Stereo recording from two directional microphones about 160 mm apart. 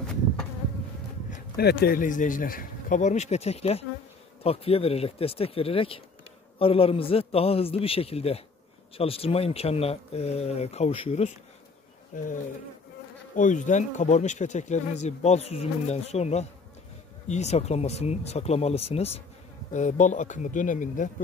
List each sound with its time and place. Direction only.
1.6 s speech: 80° left; by 11.3 s 40° left (ahead or behind)
13.4 s speech: 55° left (ahead or behind)